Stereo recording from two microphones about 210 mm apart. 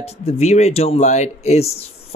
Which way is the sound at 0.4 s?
30° left (ahead or behind).